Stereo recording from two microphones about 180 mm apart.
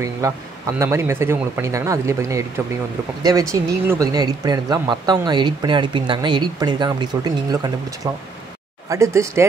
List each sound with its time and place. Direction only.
0.2 s speech: 20° right (ahead or behind)